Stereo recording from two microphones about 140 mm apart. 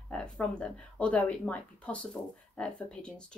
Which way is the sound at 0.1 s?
5° left (ahead or behind).